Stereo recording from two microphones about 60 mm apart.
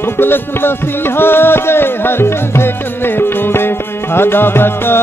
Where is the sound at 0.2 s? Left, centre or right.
Left.